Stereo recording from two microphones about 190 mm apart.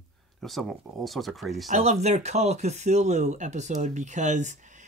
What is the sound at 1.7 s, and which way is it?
Speech, 35° right (ahead or behind).